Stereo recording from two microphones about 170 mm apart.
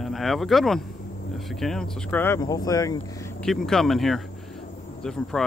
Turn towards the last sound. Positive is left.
turn(degrees=5)  # may be behind; listen again after turning